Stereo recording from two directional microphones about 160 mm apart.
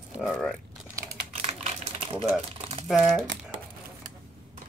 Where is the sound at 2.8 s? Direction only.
5° right (ahead or behind).